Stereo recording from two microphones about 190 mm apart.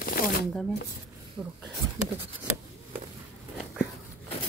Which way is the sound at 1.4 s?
5° right (ahead or behind).